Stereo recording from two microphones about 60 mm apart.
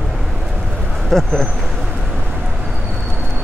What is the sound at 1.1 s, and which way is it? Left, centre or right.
Speech, centre.